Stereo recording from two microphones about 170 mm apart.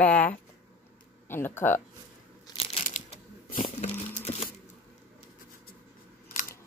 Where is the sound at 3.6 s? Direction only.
40° left (ahead or behind).